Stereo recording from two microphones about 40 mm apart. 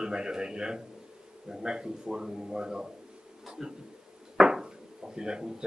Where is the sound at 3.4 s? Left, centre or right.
Centre.